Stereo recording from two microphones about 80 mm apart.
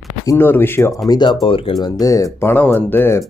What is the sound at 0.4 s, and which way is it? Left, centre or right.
Speech, left.